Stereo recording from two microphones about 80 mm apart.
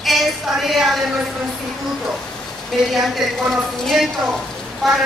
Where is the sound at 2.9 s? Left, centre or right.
Centre.